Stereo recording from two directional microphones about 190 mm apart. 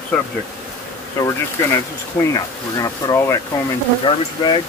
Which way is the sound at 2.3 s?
20° left (ahead or behind).